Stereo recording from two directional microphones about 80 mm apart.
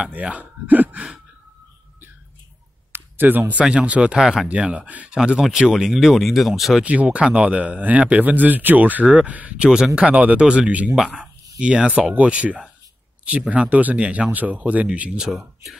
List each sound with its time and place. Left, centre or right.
0.0 s speech: centre
2.9 s a sound: right
3.6 s speech: centre
6.8 s speech: centre